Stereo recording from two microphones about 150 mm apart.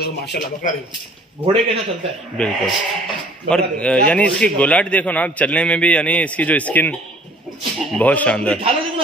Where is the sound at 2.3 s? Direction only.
5° left (ahead or behind).